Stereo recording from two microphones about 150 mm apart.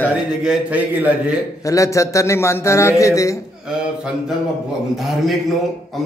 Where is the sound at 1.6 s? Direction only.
20° left (ahead or behind).